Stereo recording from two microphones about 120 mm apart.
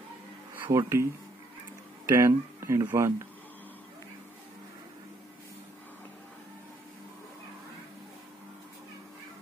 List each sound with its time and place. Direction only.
0.7 s speech: 20° right (ahead or behind)
2.0 s speech: 25° right (ahead or behind)